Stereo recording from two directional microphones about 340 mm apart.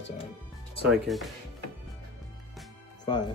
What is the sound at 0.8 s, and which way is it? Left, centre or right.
Speech, centre.